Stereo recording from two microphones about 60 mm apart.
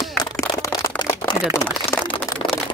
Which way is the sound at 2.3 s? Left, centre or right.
Left.